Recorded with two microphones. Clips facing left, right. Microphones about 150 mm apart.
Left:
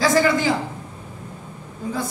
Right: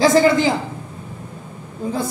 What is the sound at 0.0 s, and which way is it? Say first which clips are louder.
Speech: right 4 dB; 25° right (ahead or behind).